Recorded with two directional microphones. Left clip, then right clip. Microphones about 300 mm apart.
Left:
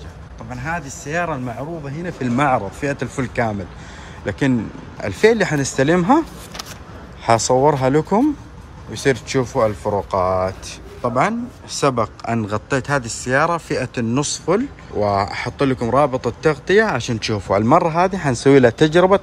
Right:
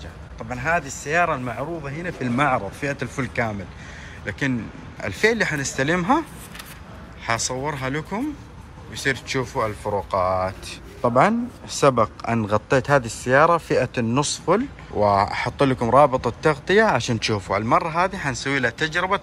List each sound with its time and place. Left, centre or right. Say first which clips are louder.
0.5 s speech: right 3 dB; centre
9.6 s speech: left 7 dB; centre